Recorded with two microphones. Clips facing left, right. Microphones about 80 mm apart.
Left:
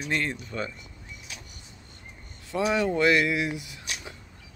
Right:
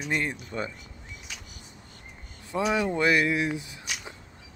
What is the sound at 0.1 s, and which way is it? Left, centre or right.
Speech, centre.